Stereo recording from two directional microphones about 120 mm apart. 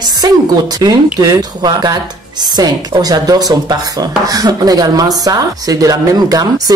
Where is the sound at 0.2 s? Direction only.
35° right (ahead or behind).